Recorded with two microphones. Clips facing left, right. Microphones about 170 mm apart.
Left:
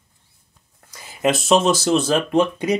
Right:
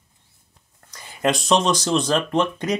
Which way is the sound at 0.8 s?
5° left (ahead or behind).